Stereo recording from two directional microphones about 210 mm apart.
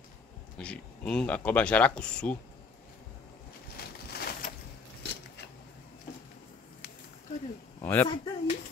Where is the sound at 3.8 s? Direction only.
50° left (ahead or behind).